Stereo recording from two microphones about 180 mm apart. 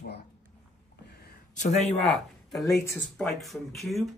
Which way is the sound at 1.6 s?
40° left (ahead or behind).